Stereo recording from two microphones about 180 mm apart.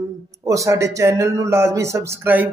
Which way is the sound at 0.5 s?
15° right (ahead or behind).